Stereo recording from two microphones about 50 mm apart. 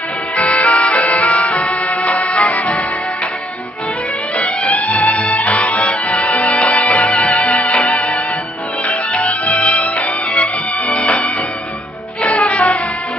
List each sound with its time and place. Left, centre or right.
0.4 s music: left
4.4 s music: left
5.7 s music: left
6.2 s music: left
7.4 s music: left
9.2 s music: left
10.9 s music: left
12.3 s music: left